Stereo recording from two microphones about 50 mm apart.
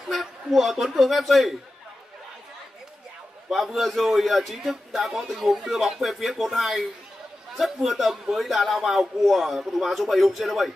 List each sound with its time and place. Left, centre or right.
0.1 s speech: centre
3.4 s a man's voice: centre